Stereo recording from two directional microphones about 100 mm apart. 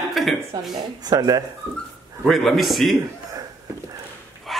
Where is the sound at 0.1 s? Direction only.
Centre (ahead or behind).